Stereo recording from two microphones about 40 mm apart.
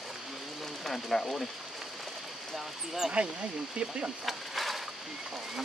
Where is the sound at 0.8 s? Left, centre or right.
Centre.